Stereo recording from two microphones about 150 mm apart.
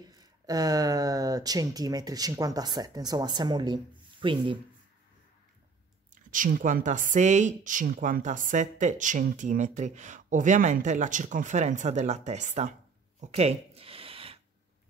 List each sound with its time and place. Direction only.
0.0 s speech: 25° right (ahead or behind)
6.3 s speech: 60° right (ahead or behind)
13.2 s a sound: 45° right (ahead or behind)